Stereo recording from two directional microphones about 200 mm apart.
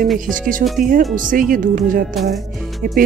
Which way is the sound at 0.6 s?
40° right (ahead or behind).